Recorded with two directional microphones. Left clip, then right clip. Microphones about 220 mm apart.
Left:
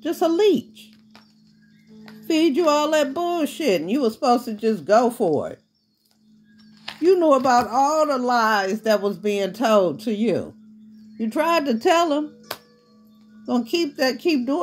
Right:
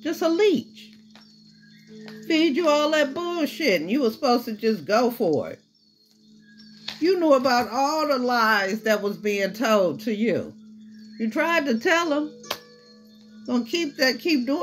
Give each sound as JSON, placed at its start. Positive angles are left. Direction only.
{"t": 0.0, "sound": "speech", "side_deg": 45}
{"t": 2.2, "sound": "speech", "side_deg": 45}
{"t": 6.8, "sound": "speech", "side_deg": 40}
{"t": 13.5, "sound": "speech", "side_deg": 45}